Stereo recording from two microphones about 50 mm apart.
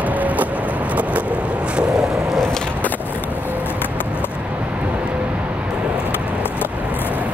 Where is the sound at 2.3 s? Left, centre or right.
Centre.